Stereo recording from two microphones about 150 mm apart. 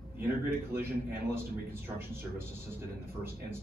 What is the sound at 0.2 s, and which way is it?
A man's voice, 15° right (ahead or behind).